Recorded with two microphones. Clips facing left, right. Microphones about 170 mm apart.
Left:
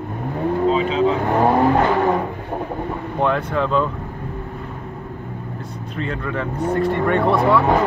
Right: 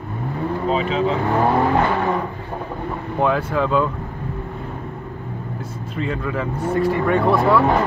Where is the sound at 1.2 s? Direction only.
40° left (ahead or behind).